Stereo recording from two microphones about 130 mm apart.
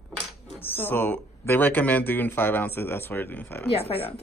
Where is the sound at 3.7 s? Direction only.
50° left (ahead or behind).